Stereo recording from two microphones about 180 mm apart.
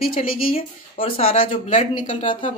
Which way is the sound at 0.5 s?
30° left (ahead or behind).